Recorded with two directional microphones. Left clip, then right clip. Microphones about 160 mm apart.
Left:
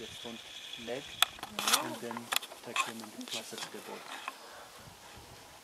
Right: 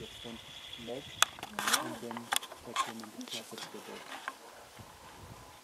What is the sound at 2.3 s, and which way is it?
Speech, 65° left (ahead or behind).